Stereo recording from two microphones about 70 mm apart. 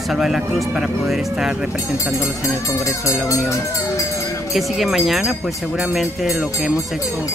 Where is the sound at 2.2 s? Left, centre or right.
Left.